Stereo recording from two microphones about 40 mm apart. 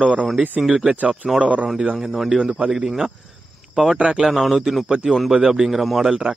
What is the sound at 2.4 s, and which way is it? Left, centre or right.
Speech, centre.